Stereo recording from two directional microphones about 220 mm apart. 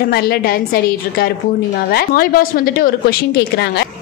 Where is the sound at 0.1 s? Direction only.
45° left (ahead or behind).